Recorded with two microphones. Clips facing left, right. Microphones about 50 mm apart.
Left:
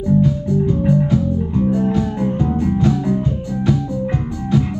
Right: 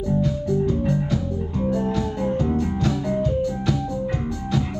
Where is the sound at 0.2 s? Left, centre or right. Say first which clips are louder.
Left 5 dB; left.